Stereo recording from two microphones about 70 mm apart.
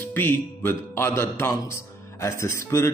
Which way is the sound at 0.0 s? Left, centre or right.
Left.